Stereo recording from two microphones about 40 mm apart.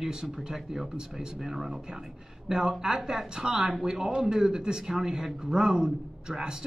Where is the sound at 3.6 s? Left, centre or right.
Right.